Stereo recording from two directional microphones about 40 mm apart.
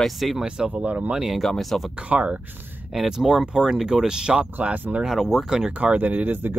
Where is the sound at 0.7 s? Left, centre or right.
Right.